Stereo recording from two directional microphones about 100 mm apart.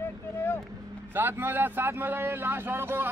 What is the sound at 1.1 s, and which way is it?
A man's voice, 20° right (ahead or behind).